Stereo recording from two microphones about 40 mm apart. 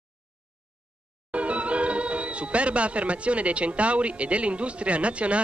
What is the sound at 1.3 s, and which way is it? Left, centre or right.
Speech, right.